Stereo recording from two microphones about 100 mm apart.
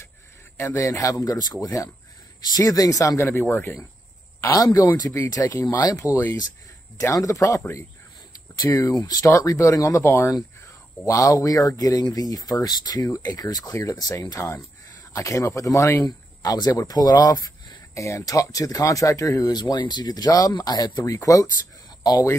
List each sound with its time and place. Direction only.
0.6 s speech: 30° left (ahead or behind)
4.4 s speech: 35° left (ahead or behind)
5.5 s speech: 25° left (ahead or behind); by 21.0 s 45° left (ahead or behind)
21.0 s speech: 35° left (ahead or behind)